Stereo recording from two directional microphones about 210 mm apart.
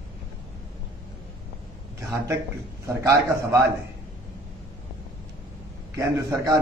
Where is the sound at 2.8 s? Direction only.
15° right (ahead or behind).